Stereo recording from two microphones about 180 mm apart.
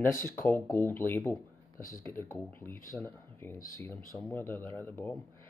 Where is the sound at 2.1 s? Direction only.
10° left (ahead or behind).